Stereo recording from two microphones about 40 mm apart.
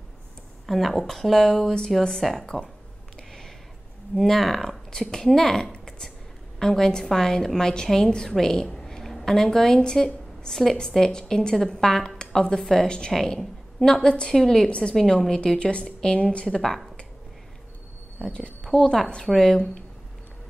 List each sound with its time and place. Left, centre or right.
0.7 s speech: centre
2.5 s a woman's voice: centre
4.2 s a woman's voice: centre
5.7 s a sound: centre
6.6 s a woman's voice: centre
14.3 s a woman's voice: centre
14.7 s a woman's voice: left
18.3 s a woman's voice: left